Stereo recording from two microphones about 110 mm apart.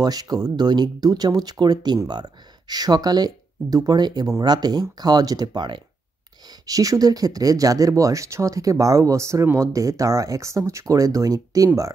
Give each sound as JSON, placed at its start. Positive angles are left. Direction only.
{"t": 0.0, "sound": "speech", "side_deg": -35}